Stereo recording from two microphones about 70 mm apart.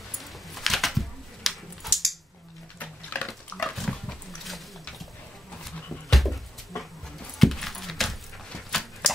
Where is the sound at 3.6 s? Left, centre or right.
Centre.